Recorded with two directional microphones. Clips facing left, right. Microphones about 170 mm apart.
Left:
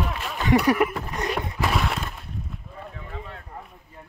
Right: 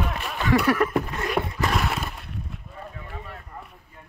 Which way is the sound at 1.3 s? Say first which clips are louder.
Right 1 dB; centre (ahead or behind).